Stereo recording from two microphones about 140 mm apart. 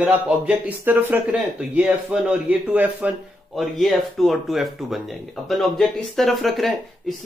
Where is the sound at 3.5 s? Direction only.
Centre (ahead or behind).